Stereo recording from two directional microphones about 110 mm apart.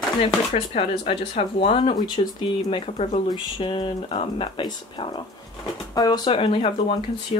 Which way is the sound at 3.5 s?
50° left (ahead or behind).